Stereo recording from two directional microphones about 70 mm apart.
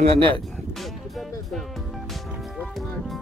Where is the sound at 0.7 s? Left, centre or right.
Centre.